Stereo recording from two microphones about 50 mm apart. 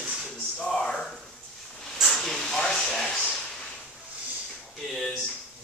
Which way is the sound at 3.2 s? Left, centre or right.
Centre.